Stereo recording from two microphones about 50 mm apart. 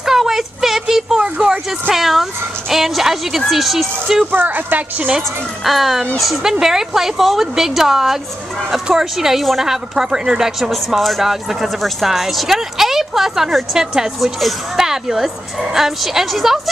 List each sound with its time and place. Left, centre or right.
0.0 s a sound: centre
2.0 s dog: centre
2.7 s speech: centre
4.3 s a woman's voice: right
5.6 s a woman's voice: centre